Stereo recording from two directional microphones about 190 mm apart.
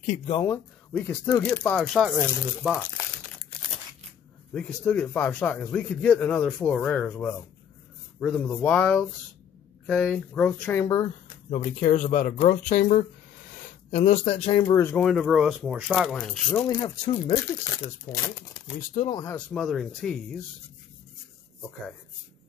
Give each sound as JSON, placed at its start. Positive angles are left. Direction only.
{"t": 0.0, "sound": "speech", "side_deg": 35}
{"t": 0.9, "sound": "speech", "side_deg": 15}
{"t": 4.6, "sound": "speech", "side_deg": 10}
{"t": 10.9, "sound": "speech", "side_deg": 20}
{"t": 11.5, "sound": "speech", "side_deg": 40}
{"t": 14.6, "sound": "speech", "side_deg": 15}
{"t": 16.5, "sound": "speech", "side_deg": 25}
{"t": 17.8, "sound": "speech", "side_deg": 15}
{"t": 19.3, "sound": "speech", "side_deg": 0}